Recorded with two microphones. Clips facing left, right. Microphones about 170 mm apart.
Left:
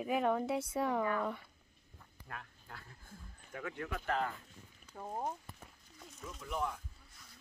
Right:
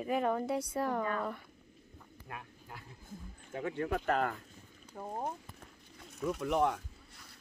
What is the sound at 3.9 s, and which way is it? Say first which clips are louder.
Speech: right 4 dB; 50° right (ahead or behind).